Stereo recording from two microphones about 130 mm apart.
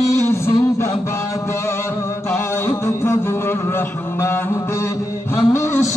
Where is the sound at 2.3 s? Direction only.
20° left (ahead or behind).